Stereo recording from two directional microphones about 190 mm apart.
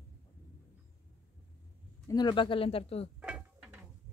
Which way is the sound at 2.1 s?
25° left (ahead or behind).